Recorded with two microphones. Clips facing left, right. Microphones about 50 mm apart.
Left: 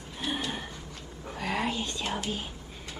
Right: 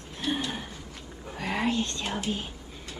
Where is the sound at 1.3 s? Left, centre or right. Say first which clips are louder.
Right 2 dB; centre.